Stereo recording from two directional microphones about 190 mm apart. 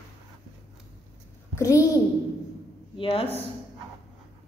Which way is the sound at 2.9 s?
30° left (ahead or behind).